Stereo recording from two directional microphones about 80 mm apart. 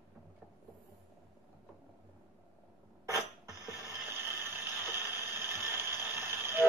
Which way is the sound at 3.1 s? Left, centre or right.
Right.